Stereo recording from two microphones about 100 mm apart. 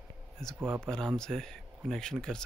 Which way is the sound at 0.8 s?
5° left (ahead or behind).